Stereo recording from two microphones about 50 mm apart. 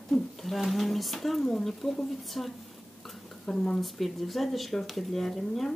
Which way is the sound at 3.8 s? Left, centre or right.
Centre.